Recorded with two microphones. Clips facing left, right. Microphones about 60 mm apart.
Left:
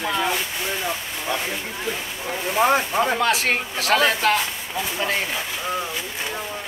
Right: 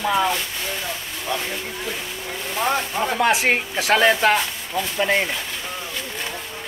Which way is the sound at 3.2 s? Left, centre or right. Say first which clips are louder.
Right 2 dB; right.